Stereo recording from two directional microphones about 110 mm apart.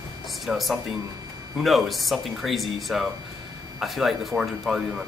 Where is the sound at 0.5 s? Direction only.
Centre (ahead or behind).